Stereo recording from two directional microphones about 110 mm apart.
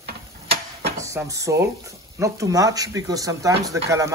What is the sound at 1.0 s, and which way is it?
Speech, 30° right (ahead or behind).